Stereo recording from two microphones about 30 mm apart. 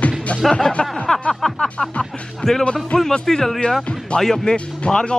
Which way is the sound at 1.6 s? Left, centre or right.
Left.